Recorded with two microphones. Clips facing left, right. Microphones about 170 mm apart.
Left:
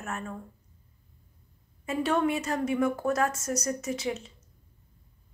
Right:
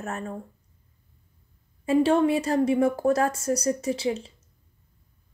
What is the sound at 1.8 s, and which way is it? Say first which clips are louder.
A woman's voice: right 6 dB; 30° right (ahead or behind).